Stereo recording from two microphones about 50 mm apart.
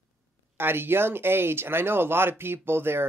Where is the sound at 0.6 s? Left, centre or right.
Right.